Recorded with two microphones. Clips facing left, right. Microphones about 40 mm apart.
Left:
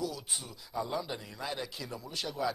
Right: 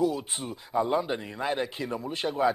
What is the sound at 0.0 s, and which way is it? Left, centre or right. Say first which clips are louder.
A man's voice: right 10 dB; right.